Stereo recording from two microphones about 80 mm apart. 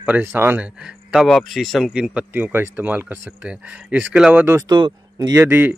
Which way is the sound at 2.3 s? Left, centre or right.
Right.